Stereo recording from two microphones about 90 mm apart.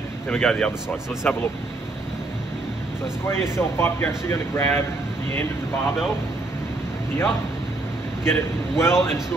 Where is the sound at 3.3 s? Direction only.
30° left (ahead or behind).